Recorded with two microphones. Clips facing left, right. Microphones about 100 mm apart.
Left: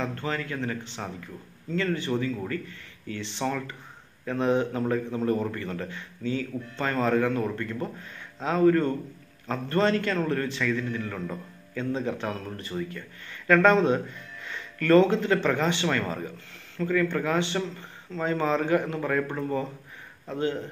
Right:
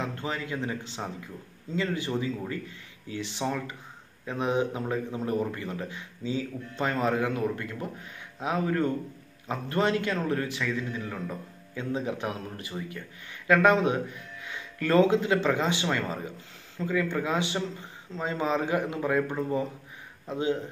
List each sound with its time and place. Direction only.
0.0 s a man's voice: 15° right (ahead or behind)